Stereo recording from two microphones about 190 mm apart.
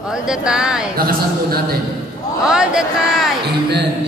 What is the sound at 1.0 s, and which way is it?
Speech, 55° right (ahead or behind).